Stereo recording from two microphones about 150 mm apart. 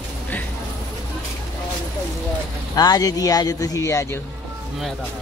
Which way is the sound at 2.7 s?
25° left (ahead or behind).